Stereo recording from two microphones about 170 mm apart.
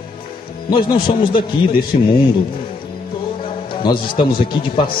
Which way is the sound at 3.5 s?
30° left (ahead or behind).